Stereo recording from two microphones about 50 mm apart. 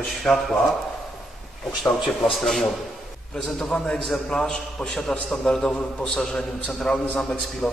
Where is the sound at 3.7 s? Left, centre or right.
Left.